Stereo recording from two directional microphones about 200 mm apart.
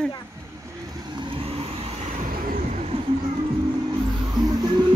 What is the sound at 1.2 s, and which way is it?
Vehicle, 25° right (ahead or behind).